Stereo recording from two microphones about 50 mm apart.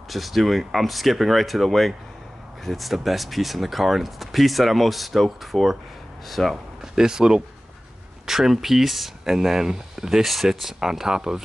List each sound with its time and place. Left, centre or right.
0.1 s speech: centre
6.5 s speech: centre
10.8 s speech: centre